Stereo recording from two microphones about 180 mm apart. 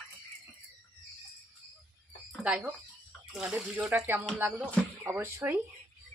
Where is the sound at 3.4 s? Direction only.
5° right (ahead or behind).